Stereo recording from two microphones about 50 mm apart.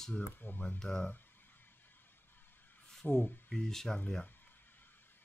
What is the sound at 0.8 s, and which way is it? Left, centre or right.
Speech, centre.